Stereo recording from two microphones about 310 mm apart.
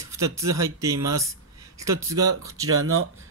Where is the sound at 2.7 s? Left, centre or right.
Right.